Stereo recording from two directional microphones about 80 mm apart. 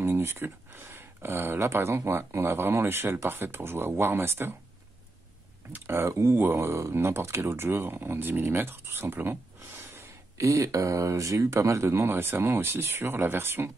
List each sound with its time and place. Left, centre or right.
0.0 s speech: right
5.7 s speech: right